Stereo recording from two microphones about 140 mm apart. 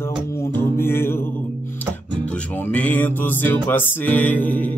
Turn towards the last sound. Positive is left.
turn(degrees=10)  # may be behind; listen again after turning